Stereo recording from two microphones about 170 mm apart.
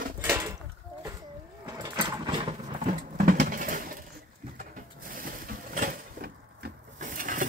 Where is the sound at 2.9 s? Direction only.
50° right (ahead or behind).